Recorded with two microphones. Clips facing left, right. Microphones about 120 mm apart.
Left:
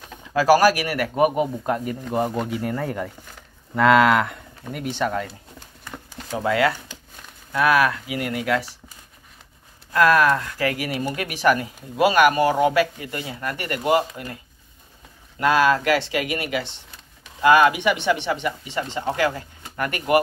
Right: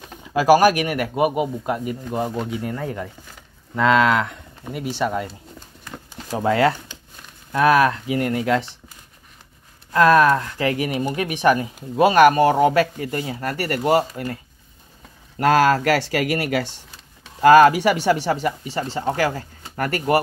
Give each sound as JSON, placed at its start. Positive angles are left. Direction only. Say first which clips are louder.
{"t": 0.2, "sound": "speech", "louder": "right 2 dB", "side_deg": -15}
{"t": 4.9, "sound": "speech", "louder": "right 1 dB", "side_deg": -10}
{"t": 6.3, "sound": "speech", "louder": "right 3 dB", "side_deg": -30}
{"t": 9.9, "sound": "speech", "louder": "right 3 dB", "side_deg": -25}
{"t": 15.3, "sound": "speech", "louder": "right 2 dB", "side_deg": -45}